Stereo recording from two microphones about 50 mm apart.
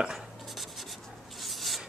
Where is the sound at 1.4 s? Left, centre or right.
Centre.